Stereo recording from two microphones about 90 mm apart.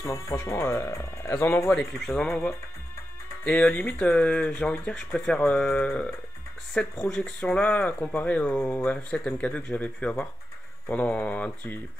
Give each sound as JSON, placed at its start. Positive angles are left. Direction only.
{"t": 0.0, "sound": "speech", "side_deg": 30}
{"t": 1.7, "sound": "speech", "side_deg": 5}
{"t": 5.7, "sound": "speech", "side_deg": 20}